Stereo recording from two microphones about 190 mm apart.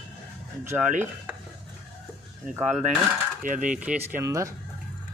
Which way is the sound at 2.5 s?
40° right (ahead or behind).